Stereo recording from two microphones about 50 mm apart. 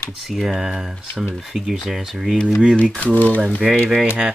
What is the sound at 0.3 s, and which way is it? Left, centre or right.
Speech, centre.